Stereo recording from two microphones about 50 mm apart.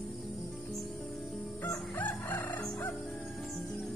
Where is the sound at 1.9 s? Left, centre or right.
Left.